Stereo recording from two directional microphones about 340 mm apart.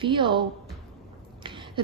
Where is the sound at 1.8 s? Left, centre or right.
Centre.